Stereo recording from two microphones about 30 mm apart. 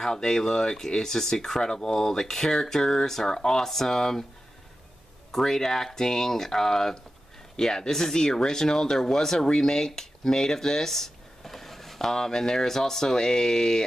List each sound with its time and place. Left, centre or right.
0.0 s speech: centre
5.3 s speech: centre
12.0 s speech: centre